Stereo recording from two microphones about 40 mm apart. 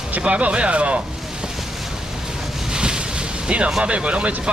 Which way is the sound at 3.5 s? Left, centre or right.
Right.